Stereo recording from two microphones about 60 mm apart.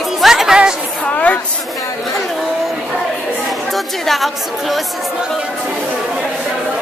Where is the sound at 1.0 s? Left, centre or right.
Left.